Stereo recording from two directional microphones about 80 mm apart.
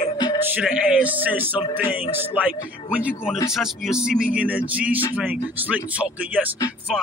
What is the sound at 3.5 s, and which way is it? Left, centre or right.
Speech, centre.